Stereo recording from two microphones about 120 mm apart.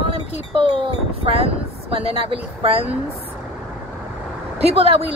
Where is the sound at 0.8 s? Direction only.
50° right (ahead or behind).